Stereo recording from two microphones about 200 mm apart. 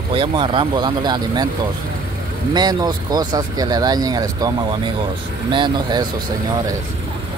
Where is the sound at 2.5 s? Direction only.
20° right (ahead or behind).